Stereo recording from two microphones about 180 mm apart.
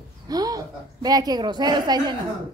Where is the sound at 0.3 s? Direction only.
20° right (ahead or behind).